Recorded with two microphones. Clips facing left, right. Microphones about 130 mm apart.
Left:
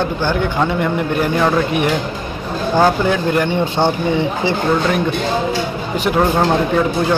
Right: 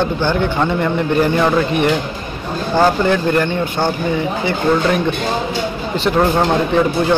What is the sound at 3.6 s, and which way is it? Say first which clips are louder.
Speech: left 2 dB; 25° left (ahead or behind).